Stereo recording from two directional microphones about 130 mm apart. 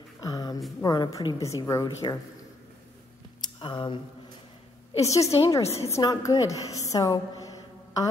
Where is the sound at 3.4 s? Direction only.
40° left (ahead or behind).